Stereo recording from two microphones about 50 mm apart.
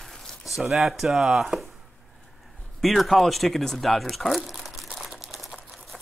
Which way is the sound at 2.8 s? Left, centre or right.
Centre.